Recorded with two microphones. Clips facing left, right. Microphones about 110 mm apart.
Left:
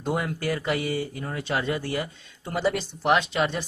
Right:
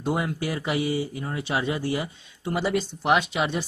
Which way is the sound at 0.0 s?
10° right (ahead or behind).